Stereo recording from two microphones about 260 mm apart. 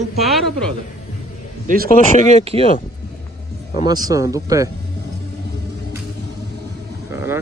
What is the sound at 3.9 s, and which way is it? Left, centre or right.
Speech, centre.